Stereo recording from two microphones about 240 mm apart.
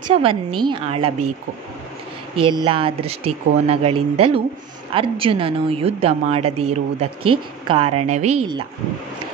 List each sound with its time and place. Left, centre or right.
0.1 s a woman's voice: right
2.5 s a woman's voice: right